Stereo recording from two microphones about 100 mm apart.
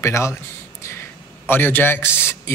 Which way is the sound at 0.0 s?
30° left (ahead or behind).